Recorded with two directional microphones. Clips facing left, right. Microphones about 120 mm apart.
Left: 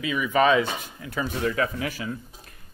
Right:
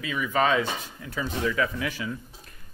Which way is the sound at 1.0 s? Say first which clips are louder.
Left 2 dB; 50° left (ahead or behind).